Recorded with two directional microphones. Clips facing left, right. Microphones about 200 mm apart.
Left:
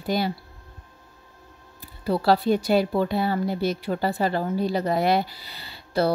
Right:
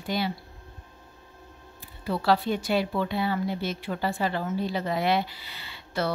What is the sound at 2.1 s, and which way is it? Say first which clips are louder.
Speech: left 4 dB; 35° left (ahead or behind).